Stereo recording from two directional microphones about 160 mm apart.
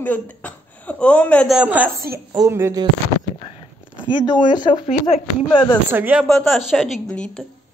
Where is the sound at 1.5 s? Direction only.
10° right (ahead or behind).